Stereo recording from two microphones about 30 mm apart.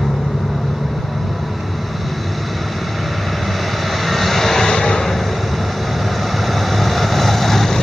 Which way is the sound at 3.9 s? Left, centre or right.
Centre.